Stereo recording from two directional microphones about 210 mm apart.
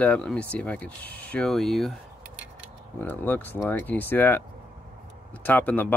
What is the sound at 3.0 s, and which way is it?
Speech, 10° left (ahead or behind).